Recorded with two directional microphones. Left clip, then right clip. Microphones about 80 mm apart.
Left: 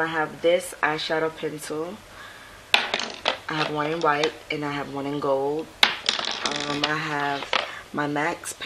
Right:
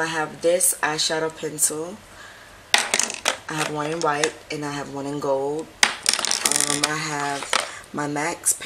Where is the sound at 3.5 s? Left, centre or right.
Centre.